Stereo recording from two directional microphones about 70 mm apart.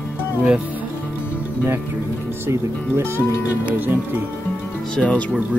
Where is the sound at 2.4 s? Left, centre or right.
Right.